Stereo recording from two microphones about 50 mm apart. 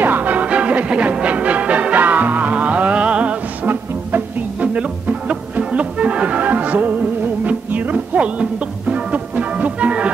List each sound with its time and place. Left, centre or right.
0.0 s music: right
4.6 s music: right